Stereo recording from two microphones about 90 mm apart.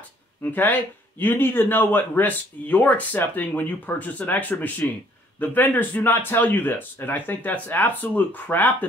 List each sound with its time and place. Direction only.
0.4 s speech: 20° left (ahead or behind)